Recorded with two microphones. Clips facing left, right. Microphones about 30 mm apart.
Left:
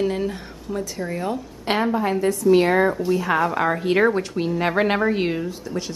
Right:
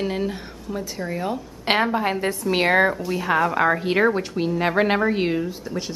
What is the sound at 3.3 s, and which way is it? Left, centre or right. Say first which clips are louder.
Speech: right 5 dB; centre.